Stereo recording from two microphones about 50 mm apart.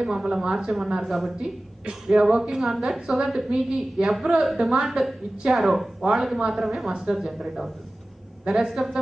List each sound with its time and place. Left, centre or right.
0.0 s a woman's voice: centre
1.3 s speech: centre
2.0 s a woman's voice: centre
3.3 s a woman's voice: centre
3.7 s a woman's voice: centre